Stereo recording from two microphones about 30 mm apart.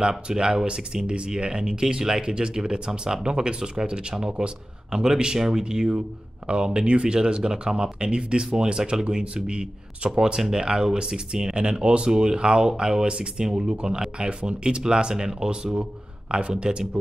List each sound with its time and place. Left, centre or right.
0.1 s speech: right
4.4 s speech: right
4.9 s speech: right
5.9 s speech: right
15.6 s speech: right